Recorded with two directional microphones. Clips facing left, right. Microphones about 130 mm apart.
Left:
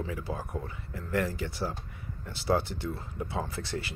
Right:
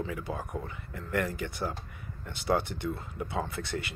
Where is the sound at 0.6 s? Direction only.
30° left (ahead or behind).